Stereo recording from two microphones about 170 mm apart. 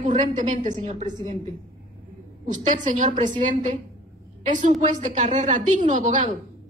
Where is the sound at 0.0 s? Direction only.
50° right (ahead or behind).